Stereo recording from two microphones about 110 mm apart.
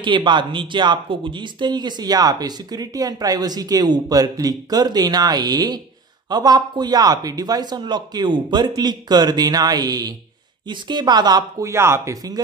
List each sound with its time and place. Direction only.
0.0 s speech: 45° right (ahead or behind); by 12.4 s 30° right (ahead or behind)